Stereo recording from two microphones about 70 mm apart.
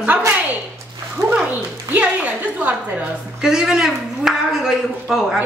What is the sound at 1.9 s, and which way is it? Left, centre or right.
Speech, centre.